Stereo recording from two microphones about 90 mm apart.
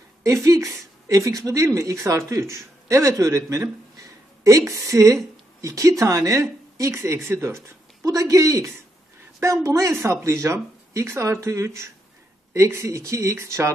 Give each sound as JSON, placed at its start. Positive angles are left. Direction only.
{"t": 0.2, "sound": "a man's voice", "side_deg": -35}